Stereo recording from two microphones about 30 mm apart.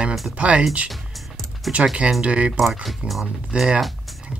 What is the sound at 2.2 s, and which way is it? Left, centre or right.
Speech, right.